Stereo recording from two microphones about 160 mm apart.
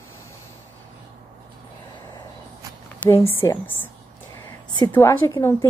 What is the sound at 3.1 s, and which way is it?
Speech, 15° left (ahead or behind).